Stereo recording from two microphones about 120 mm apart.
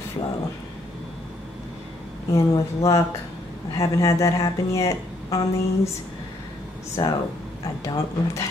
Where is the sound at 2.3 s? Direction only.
25° left (ahead or behind).